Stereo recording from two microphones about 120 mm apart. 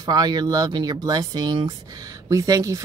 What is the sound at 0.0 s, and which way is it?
Speech, 35° right (ahead or behind).